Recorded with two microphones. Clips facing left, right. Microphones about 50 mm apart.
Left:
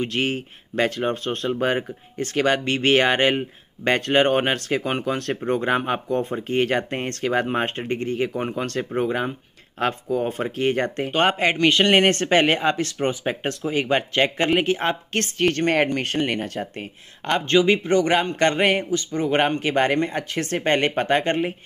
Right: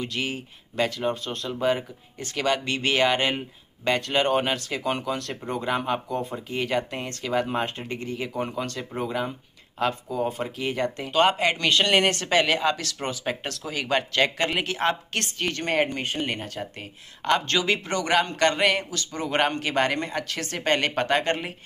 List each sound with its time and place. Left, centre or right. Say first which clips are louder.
0.0 s speech: left 6 dB; left
8.6 s speech: left 7 dB; left
9.0 s speech: left 4 dB; left
11.1 s speech: even; left
15.1 s speech: left 7 dB; left
16.3 s speech: left 5 dB; left
17.3 s speech: left 5 dB; left
18.9 s speech: left 7 dB; centre